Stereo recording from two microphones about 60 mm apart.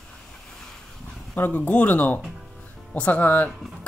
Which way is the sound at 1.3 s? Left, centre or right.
Left.